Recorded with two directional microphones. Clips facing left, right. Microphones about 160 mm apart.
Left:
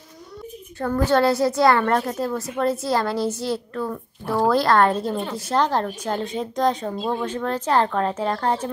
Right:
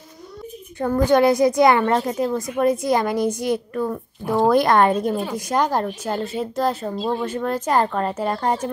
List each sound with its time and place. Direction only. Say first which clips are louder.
0.7 s a woman's voice: right 3 dB; 15° right (ahead or behind)